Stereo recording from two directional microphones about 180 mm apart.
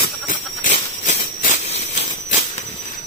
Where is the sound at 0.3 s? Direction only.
45° left (ahead or behind).